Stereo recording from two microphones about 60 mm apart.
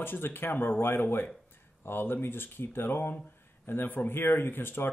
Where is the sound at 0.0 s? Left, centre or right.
Left.